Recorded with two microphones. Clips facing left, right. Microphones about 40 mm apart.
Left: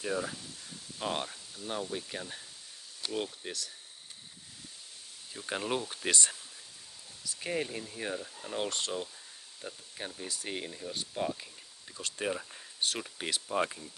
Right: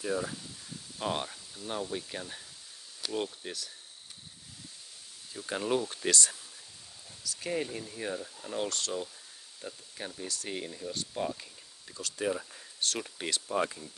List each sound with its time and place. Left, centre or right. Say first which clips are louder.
0.1 s speech: right 1 dB; centre
5.3 s speech: right 3 dB; centre
6.0 s speech: left 1 dB; left
7.2 s speech: right 1 dB; centre
9.6 s speech: even; centre
12.0 s speech: right 2 dB; left
12.4 s speech: even; centre